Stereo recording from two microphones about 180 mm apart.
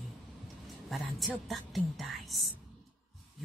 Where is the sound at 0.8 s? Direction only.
Centre (ahead or behind).